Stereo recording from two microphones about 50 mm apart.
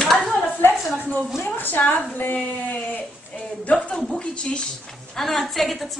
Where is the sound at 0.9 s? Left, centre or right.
Left.